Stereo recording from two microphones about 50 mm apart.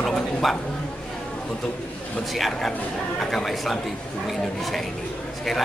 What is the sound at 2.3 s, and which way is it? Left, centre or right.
A man's voice, centre.